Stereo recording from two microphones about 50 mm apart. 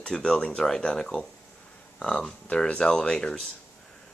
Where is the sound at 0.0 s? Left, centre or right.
Centre.